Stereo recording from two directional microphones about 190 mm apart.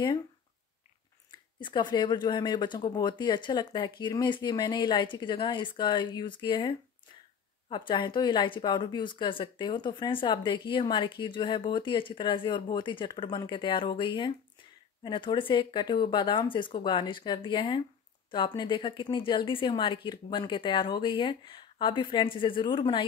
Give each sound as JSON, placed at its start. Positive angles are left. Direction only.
{"t": 1.3, "sound": "a woman's voice", "side_deg": 25}